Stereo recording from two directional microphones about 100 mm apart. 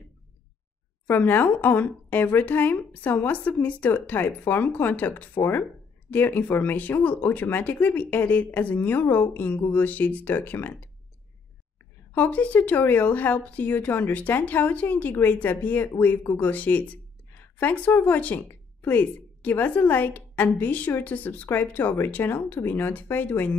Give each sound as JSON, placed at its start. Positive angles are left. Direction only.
{"t": 1.0, "sound": "a woman's voice", "side_deg": 20}
{"t": 12.1, "sound": "a woman's voice", "side_deg": 15}